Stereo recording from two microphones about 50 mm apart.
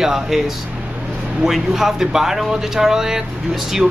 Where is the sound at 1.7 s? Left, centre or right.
Centre.